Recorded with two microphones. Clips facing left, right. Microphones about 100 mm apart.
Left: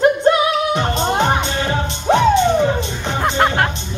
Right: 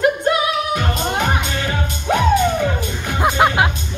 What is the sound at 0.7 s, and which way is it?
Music, 30° left (ahead or behind).